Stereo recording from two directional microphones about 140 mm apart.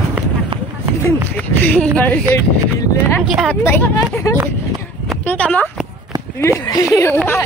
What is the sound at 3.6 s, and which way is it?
Speech, 15° left (ahead or behind).